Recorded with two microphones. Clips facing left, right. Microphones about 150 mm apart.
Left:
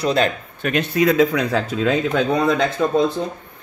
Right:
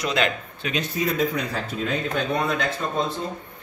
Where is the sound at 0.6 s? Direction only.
60° left (ahead or behind); by 2.5 s 90° left.